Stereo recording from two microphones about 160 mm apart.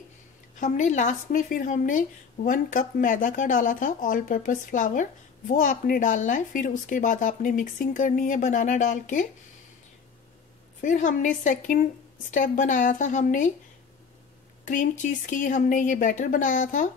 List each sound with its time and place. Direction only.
0.6 s a woman's voice: 50° left (ahead or behind)
10.8 s speech: 55° left (ahead or behind)
14.6 s speech: 55° left (ahead or behind)